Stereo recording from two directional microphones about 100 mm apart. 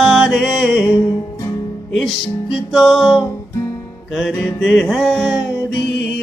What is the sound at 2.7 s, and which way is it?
Music, centre (ahead or behind).